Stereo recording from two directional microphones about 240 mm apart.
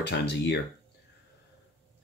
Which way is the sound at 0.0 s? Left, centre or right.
Left.